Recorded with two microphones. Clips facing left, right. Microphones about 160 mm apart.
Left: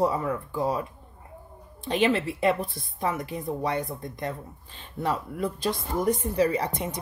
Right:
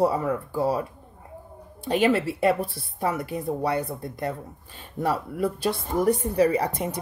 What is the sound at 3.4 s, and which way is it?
Speech, 35° right (ahead or behind).